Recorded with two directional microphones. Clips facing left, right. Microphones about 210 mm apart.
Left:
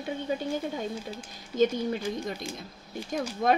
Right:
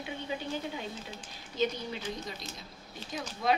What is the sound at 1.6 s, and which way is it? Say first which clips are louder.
Speech: left 7 dB; 50° left (ahead or behind).